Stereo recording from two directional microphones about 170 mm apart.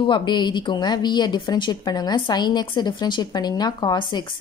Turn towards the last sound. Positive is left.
turn(degrees=25)  # may be behind; listen again after turning